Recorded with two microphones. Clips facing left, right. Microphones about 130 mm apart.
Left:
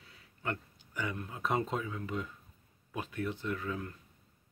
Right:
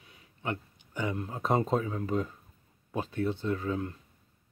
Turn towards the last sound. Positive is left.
turn(degrees=-30)  # may be behind; listen again after turning